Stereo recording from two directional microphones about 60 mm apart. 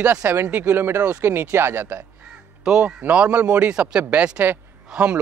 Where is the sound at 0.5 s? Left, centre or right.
Right.